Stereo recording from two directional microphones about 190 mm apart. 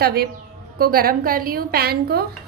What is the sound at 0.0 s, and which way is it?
Speech, 55° right (ahead or behind).